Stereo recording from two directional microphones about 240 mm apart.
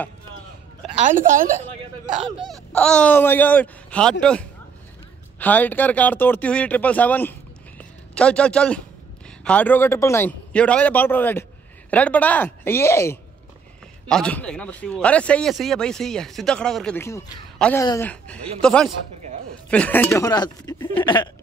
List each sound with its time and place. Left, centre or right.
0.9 s a woman's voice: right
2.4 s a man's voice: centre
21.0 s hiccup: centre